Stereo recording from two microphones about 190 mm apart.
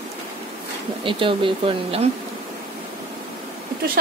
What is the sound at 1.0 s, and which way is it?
Speech, 25° right (ahead or behind).